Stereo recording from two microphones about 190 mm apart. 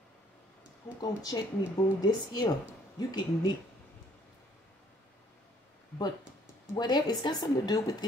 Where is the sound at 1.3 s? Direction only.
15° left (ahead or behind).